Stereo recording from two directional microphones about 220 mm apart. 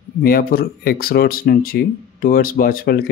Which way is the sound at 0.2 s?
45° left (ahead or behind).